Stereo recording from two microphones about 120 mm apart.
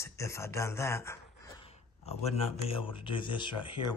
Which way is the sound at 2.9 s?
45° left (ahead or behind).